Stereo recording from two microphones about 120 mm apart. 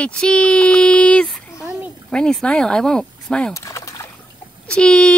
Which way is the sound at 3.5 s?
25° left (ahead or behind).